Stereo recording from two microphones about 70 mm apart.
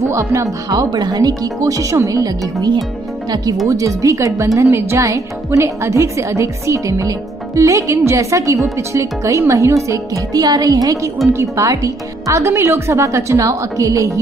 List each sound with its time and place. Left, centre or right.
0.0 s speech: right
3.6 s a woman's voice: right
10.3 s a woman's voice: right